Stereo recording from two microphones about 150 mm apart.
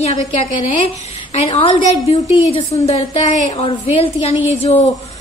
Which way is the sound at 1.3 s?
40° left (ahead or behind).